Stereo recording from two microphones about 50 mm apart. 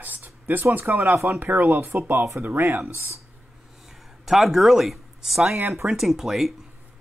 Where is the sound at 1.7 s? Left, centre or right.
Right.